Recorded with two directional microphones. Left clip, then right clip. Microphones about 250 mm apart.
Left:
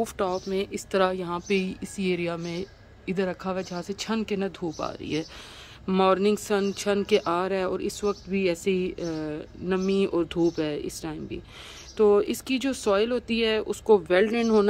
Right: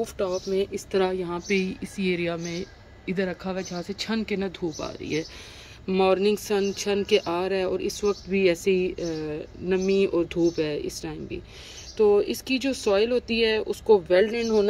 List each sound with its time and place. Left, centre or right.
0.0 s a woman's voice: centre